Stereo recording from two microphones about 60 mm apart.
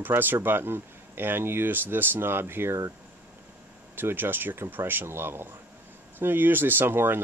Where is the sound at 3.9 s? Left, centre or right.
Right.